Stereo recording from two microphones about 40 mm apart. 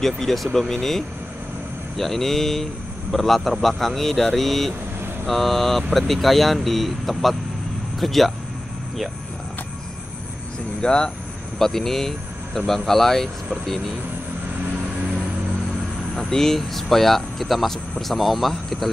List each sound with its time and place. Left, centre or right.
0.0 s speech: centre
10.8 s speech: left
11.5 s speech: centre
16.2 s speech: centre